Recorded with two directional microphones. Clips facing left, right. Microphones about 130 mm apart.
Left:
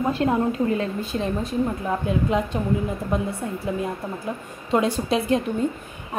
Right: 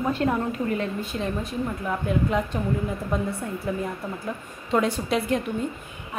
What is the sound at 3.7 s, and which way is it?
A woman's voice, 20° left (ahead or behind).